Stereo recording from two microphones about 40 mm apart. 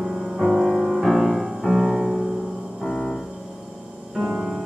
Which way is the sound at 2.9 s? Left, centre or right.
Centre.